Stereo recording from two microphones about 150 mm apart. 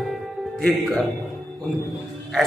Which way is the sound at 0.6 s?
5° left (ahead or behind).